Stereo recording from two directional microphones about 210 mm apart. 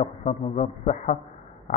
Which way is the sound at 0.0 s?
30° left (ahead or behind).